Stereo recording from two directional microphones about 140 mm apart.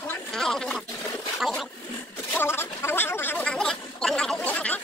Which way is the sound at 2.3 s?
15° left (ahead or behind).